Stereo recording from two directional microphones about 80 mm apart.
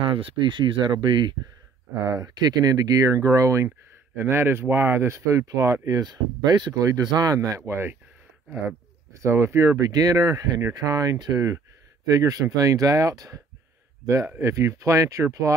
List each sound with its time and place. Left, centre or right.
0.1 s speech: right
2.0 s speech: right
3.6 s speech: right
7.6 s speech: right
9.1 s speech: right
14.4 s speech: right